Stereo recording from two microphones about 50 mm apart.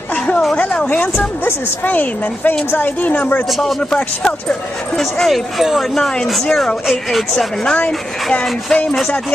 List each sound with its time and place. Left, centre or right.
1.4 s a woman's voice: left
3.9 s speech: centre
4.9 s speech: centre
5.6 s speech: centre
6.4 s speech: centre
7.7 s speech: left